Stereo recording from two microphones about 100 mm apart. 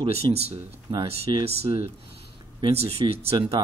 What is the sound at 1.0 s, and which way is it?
Speech, 80° right.